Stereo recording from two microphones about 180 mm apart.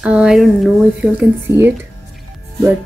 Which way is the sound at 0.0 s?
5° right (ahead or behind).